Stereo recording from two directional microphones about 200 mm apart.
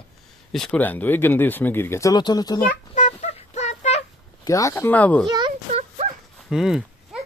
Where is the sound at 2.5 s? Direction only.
40° left (ahead or behind).